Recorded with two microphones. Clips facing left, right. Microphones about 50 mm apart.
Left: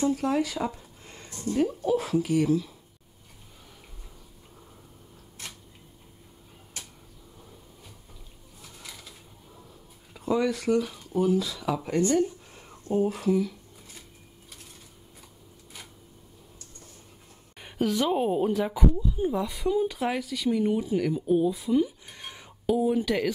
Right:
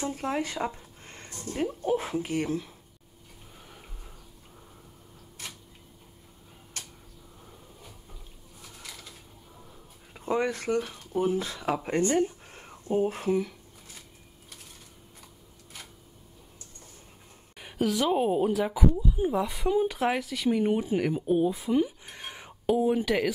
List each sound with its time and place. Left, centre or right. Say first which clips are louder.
0.1 s speech: left 4 dB; right
1.0 s a sound: right 1 dB; right
1.5 s a woman's voice: left 5 dB; centre
1.9 s speech: left 3 dB; right
8.6 s a sound: even; centre
10.1 s speech: left 2 dB; right
17.6 s a woman's voice: left 1 dB; centre